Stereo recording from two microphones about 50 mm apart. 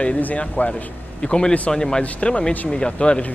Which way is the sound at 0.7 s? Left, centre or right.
Centre.